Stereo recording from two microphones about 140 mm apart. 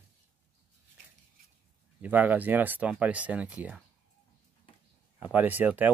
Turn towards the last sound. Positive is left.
turn(degrees=-10)  # may be behind; listen again after turning